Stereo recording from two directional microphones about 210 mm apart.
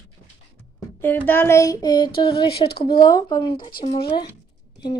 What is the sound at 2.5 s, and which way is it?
Speech, 50° left (ahead or behind).